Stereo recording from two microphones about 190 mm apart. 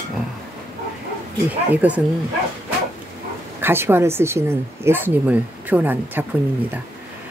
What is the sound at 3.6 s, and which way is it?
Speech, 10° right (ahead or behind).